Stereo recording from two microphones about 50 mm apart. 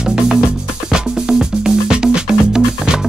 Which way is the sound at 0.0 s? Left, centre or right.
Centre.